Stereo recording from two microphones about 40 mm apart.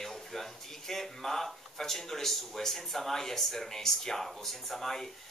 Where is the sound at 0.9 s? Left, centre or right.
Centre.